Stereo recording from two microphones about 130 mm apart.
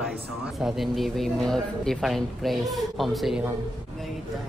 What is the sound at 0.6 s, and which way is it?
A man's voice, centre (ahead or behind).